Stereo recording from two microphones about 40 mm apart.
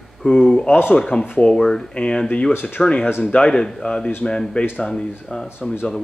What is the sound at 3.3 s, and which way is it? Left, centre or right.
Speech, left.